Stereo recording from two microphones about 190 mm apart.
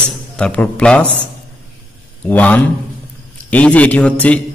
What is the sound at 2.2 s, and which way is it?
A man's voice, 10° left (ahead or behind).